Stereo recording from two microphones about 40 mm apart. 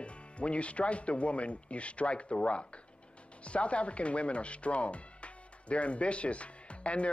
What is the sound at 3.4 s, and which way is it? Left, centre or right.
Speech, left.